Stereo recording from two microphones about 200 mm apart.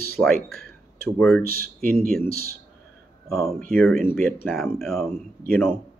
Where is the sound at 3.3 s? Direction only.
Centre (ahead or behind).